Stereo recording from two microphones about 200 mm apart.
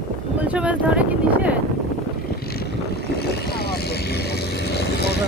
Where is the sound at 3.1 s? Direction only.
50° left (ahead or behind).